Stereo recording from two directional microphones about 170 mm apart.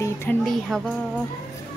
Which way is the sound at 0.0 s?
15° left (ahead or behind).